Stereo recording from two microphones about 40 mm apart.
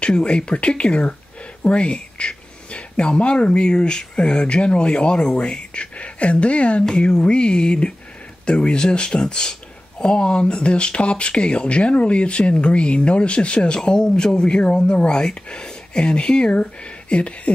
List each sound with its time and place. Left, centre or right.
0.0 s speech: left
13.7 s speech: centre
16.5 s a sound: left